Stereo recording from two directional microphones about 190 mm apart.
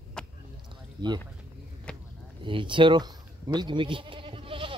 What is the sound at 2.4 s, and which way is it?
Speech, 25° right (ahead or behind).